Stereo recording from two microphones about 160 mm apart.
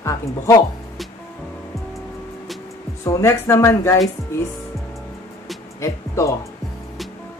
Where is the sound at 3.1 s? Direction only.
15° left (ahead or behind).